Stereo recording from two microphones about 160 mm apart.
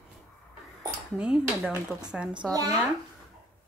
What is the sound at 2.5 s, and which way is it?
Speech, 25° right (ahead or behind).